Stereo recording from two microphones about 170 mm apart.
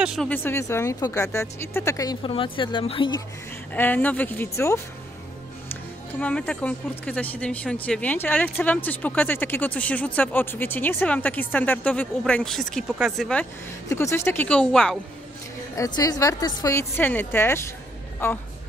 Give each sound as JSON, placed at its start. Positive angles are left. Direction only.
{"t": 0.0, "sound": "speech", "side_deg": -5}
{"t": 0.3, "sound": "speech", "side_deg": 15}
{"t": 3.7, "sound": "speech", "side_deg": 10}
{"t": 6.1, "sound": "speech", "side_deg": 5}
{"t": 13.4, "sound": "speech", "side_deg": 15}
{"t": 15.7, "sound": "speech", "side_deg": 20}